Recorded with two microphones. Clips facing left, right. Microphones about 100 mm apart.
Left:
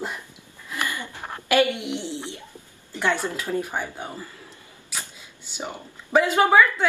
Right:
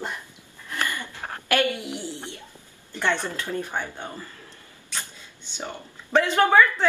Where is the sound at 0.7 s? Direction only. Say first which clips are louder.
Even; 15° left (ahead or behind).